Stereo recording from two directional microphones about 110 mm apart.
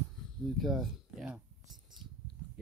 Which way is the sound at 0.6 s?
Centre (ahead or behind).